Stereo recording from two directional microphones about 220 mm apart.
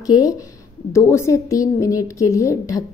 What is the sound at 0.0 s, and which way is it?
Speech, 15° left (ahead or behind).